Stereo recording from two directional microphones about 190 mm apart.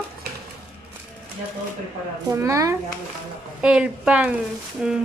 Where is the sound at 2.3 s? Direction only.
15° right (ahead or behind).